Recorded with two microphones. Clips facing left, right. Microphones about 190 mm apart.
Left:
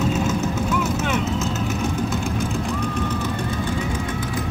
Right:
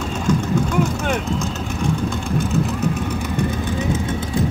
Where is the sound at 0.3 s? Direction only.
5° left (ahead or behind).